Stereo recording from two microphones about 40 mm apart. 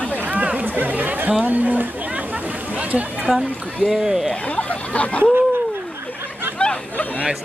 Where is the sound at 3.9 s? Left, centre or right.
Centre.